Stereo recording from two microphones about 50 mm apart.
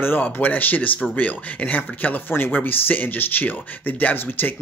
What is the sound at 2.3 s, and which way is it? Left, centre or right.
Speech, left.